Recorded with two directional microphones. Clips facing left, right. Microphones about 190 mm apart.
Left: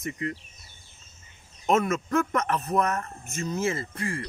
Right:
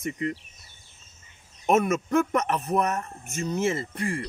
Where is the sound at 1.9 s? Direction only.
15° right (ahead or behind).